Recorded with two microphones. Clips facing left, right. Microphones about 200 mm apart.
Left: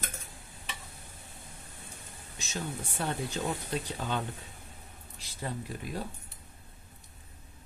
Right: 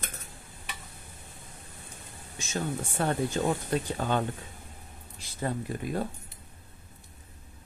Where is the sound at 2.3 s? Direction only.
50° right (ahead or behind).